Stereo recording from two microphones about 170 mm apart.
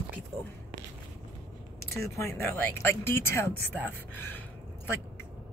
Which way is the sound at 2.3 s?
15° left (ahead or behind).